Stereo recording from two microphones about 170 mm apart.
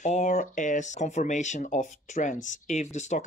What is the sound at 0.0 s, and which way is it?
Speech, 45° left (ahead or behind).